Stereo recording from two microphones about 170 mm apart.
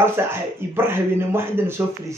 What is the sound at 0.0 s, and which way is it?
Speech, 15° right (ahead or behind).